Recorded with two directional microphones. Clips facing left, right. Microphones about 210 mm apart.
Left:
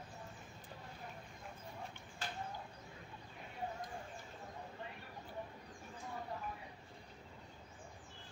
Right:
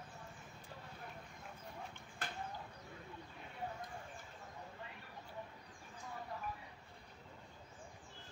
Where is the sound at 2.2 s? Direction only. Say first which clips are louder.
Left 1 dB; 55° right (ahead or behind).